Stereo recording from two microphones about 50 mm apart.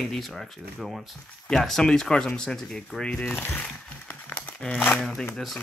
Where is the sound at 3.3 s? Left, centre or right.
Left.